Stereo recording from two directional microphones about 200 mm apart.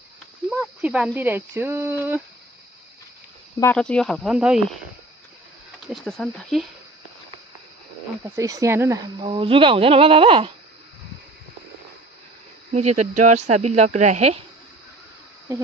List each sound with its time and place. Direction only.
0.5 s speech: 5° right (ahead or behind)
3.7 s speech: 5° left (ahead or behind)
5.9 s speech: 5° left (ahead or behind)
8.2 s speech: 15° right (ahead or behind)
9.2 s speech: 25° right (ahead or behind)
12.7 s speech: 35° right (ahead or behind)